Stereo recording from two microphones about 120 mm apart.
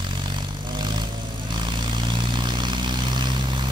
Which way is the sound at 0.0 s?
40° right (ahead or behind).